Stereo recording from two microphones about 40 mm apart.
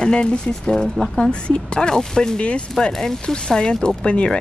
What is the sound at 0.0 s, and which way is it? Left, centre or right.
Speech, left.